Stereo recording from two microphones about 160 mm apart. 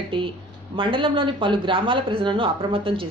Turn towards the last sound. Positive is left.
turn(degrees=-35)  # may be behind; listen again after turning